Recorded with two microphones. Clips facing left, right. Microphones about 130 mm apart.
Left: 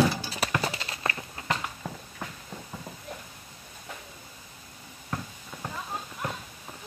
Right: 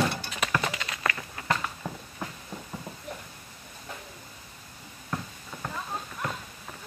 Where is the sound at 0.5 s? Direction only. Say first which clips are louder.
Right 1 dB; 35° left (ahead or behind).